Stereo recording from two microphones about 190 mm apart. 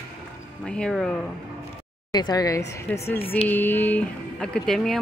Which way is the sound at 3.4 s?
10° left (ahead or behind).